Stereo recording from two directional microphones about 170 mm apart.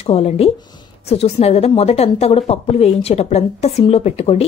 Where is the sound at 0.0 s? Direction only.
40° left (ahead or behind).